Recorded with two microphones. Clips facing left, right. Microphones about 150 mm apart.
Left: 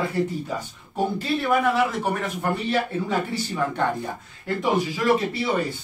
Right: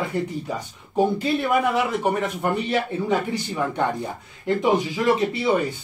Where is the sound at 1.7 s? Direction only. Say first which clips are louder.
Right 1 dB; 20° right (ahead or behind).